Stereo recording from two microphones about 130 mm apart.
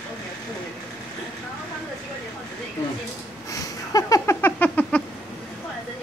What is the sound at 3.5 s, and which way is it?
Cat, 25° left (ahead or behind).